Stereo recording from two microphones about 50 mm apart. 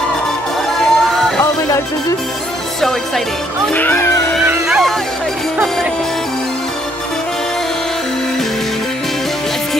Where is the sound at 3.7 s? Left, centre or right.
Left.